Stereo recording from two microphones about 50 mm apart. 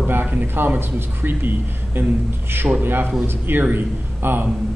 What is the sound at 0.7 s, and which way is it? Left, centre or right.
A man's voice, right.